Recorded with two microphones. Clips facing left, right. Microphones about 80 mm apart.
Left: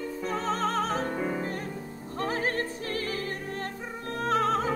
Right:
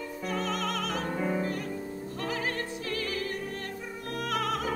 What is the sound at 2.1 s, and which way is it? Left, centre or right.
Music, left.